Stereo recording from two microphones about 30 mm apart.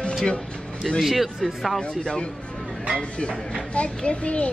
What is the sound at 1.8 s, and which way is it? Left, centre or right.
A child's voice, left.